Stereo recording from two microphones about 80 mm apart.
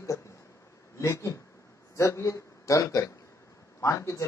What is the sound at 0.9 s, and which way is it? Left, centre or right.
A man's voice, left.